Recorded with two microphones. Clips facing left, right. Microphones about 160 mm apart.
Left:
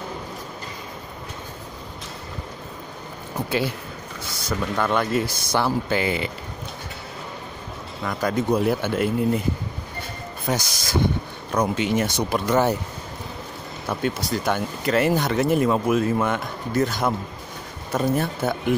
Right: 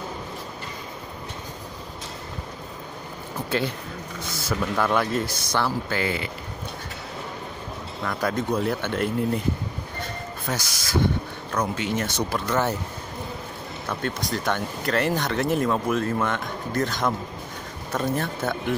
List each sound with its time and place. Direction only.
3.4 s speech: 10° left (ahead or behind)
4.5 s speech: centre (ahead or behind)
5.2 s speech: 10° left (ahead or behind)
8.0 s speech: centre (ahead or behind)
8.5 s speech: 10° left (ahead or behind)
10.5 s speech: 15° left (ahead or behind)
13.8 s speech: 5° left (ahead or behind)